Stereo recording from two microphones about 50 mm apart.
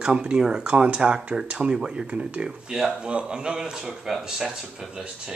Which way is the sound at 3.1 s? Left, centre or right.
Centre.